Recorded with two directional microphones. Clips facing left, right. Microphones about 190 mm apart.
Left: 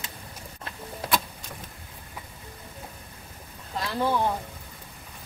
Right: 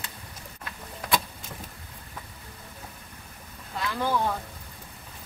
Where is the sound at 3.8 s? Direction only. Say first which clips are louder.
Left 1 dB; 30° left (ahead or behind).